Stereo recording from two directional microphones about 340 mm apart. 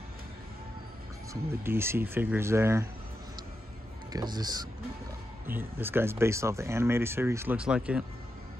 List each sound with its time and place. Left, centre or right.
1.3 s speech: centre
4.1 s speech: centre